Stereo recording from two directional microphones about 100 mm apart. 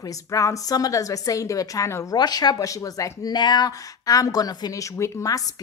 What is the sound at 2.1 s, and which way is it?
A man's voice, 45° left (ahead or behind).